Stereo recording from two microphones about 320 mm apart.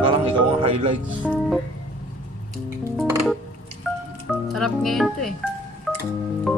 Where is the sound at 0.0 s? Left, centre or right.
Centre.